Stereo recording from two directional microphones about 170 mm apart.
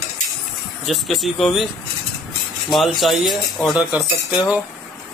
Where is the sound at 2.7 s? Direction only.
Centre (ahead or behind).